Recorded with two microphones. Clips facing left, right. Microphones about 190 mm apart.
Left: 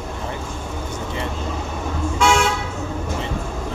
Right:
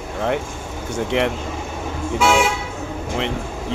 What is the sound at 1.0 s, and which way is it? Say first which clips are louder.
Speech: right 10 dB; 70° right (ahead or behind).